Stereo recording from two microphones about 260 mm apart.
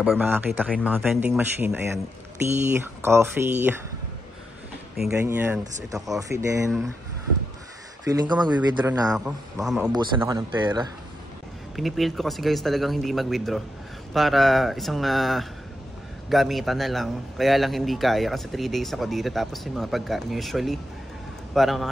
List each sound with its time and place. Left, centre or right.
0.0 s a man's voice: centre
3.0 s speech: centre
4.9 s speech: centre
8.0 s a man's voice: centre
9.9 s speech: centre
11.7 s a man's voice: centre